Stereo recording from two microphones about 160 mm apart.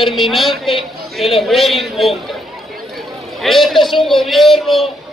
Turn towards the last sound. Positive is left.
turn(degrees=0)  # may be behind; listen again after turning